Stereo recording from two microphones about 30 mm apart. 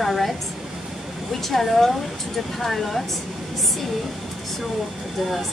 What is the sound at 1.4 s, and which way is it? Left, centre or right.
Speech, centre.